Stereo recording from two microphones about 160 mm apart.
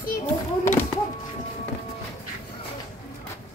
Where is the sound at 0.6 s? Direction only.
15° left (ahead or behind).